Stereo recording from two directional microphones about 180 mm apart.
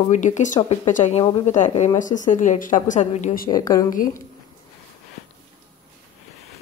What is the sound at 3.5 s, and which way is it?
Speech, 20° left (ahead or behind).